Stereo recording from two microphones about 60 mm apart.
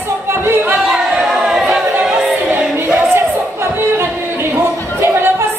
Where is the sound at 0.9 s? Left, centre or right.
Centre.